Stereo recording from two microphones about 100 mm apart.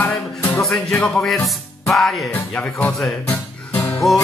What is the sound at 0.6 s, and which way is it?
Music, 5° left (ahead or behind).